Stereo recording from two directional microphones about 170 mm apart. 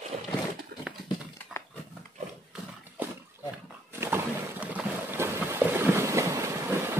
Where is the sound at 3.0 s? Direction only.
10° right (ahead or behind).